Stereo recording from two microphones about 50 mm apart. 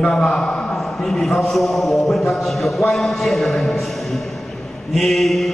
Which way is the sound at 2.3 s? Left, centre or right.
Centre.